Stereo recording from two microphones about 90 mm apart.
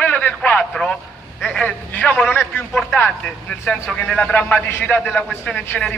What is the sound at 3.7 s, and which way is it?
A man's voice, 15° left (ahead or behind).